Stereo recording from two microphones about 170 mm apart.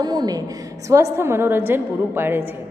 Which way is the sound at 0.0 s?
25° right (ahead or behind).